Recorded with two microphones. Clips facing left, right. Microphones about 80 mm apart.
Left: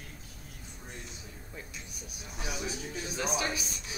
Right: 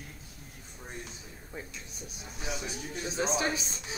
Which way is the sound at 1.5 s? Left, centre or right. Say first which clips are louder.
Right 4 dB; right.